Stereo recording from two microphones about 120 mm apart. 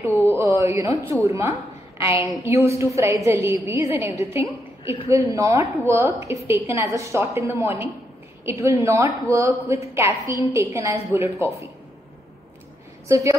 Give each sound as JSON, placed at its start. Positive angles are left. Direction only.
{"t": 0.0, "sound": "a woman's voice", "side_deg": -20}
{"t": 13.1, "sound": "a woman's voice", "side_deg": -25}